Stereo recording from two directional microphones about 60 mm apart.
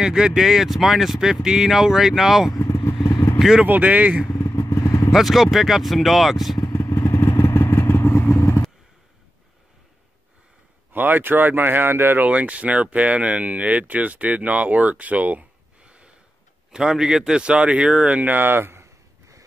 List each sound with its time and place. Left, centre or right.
0.0 s speech: centre
2.6 s vehicle: left
3.3 s speech: centre
3.6 s speech: right
4.4 s vehicle: left
5.1 s speech: centre
6.7 s vehicle: left
7.5 s vehicle: left
10.9 s speech: right
12.3 s speech: right